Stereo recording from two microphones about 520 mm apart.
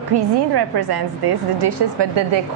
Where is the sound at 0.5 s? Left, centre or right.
Right.